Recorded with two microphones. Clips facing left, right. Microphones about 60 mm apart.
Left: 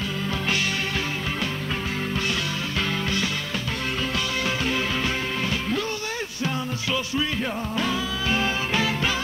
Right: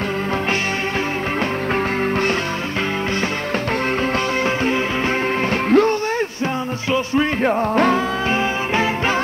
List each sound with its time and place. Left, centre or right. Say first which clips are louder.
5.7 s music: right 13 dB; right
7.2 s music: right 9 dB; right
8.3 s music: right 5 dB; right